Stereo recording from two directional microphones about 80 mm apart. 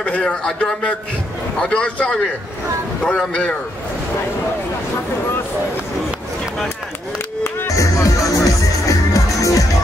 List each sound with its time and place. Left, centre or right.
0.0 s a man's voice: centre
7.4 s music: left